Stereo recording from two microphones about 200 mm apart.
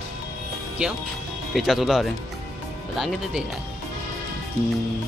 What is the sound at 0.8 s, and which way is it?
Speech, 5° right (ahead or behind).